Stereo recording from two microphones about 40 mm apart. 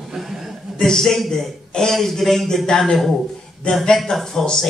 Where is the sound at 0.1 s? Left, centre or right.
Centre.